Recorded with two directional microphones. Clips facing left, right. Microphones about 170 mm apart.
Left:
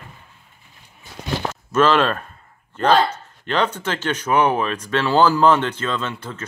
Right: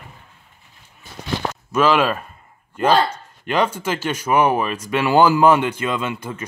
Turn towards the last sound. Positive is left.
turn(degrees=-10)  # may be behind; listen again after turning